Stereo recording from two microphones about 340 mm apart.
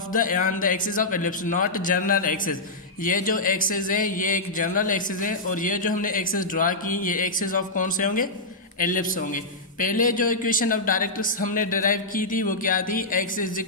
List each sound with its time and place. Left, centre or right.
0.1 s a man's voice: left